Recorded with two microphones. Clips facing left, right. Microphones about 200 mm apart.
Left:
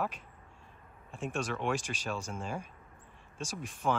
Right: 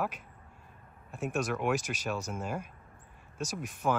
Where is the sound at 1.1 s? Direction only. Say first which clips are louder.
Right 3 dB; 5° right (ahead or behind).